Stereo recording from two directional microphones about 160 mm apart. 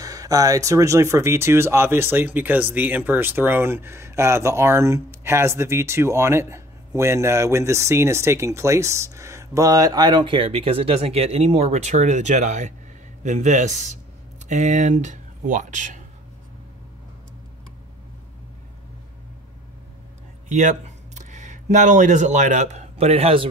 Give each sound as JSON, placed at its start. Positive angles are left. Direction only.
{"t": 0.0, "sound": "speech", "side_deg": -20}
{"t": 20.4, "sound": "speech", "side_deg": -50}